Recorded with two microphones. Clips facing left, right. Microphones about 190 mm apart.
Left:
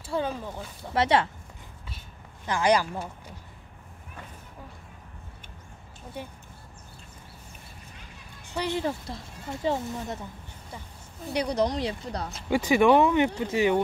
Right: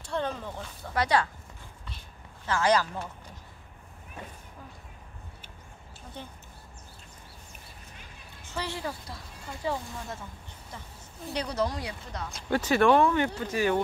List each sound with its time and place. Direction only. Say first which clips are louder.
0.0 s a sound: left 2 dB; 5° left (ahead or behind)
0.9 s speech: left 3 dB; 25° left (ahead or behind)
2.4 s speech: left 2 dB; 15° left (ahead or behind)
6.2 s speech: left 5 dB; 10° left (ahead or behind)
8.5 s speech: left 6 dB; 15° left (ahead or behind)
11.3 s speech: left 4 dB; 15° left (ahead or behind)
12.3 s speech: right 1 dB; centre (ahead or behind)
12.5 s speech: left 2 dB; 15° left (ahead or behind)